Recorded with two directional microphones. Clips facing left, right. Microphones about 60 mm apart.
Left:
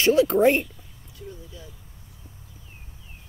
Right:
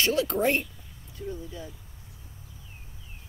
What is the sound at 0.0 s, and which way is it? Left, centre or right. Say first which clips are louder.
Speech: left 7 dB; left.